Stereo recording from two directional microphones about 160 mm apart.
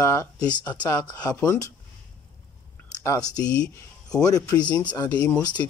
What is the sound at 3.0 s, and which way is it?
Speech, 20° left (ahead or behind).